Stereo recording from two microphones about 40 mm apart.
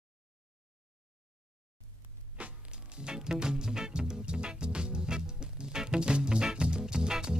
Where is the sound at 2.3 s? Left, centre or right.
Right.